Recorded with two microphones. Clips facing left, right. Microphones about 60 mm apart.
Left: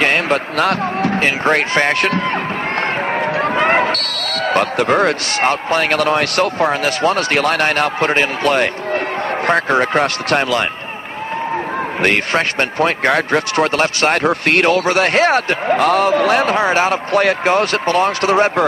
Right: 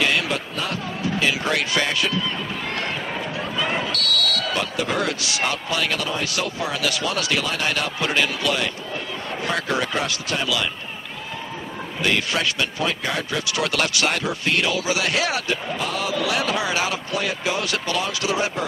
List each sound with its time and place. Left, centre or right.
0.0 s basketball bounce: left
0.6 s speech: left
3.3 s speech: left
12.0 s speech: left